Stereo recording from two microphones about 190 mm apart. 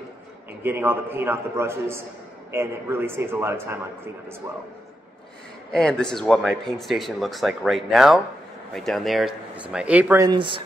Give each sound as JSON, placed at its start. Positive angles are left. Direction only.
{"t": 0.5, "sound": "a man's voice", "side_deg": -10}
{"t": 5.7, "sound": "speech", "side_deg": 5}
{"t": 10.2, "sound": "speech", "side_deg": -25}